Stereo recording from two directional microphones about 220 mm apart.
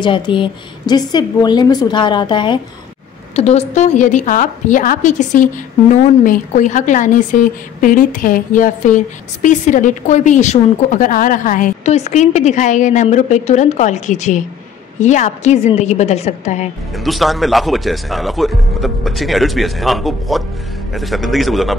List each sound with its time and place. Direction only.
0.0 s a woman's voice: 20° left (ahead or behind)
16.9 s speech: centre (ahead or behind)